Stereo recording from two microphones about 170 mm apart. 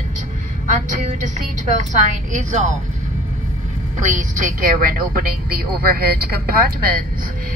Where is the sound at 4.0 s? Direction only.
50° right (ahead or behind).